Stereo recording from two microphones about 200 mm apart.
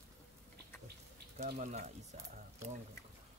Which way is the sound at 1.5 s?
35° right (ahead or behind).